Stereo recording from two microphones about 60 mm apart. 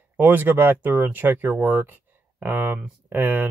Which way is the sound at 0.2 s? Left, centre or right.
Right.